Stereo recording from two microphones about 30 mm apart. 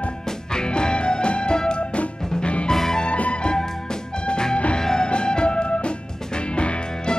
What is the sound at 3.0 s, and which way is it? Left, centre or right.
Music, left.